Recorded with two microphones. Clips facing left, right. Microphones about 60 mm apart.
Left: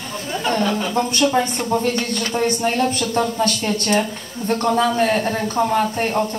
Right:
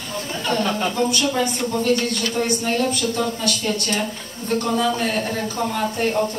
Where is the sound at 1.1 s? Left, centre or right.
Left.